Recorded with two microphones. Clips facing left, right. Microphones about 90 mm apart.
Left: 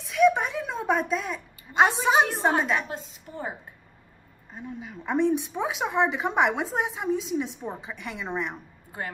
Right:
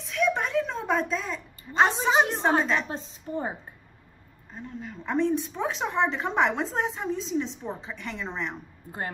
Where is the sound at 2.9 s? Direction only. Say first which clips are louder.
Right 2 dB; 30° right (ahead or behind).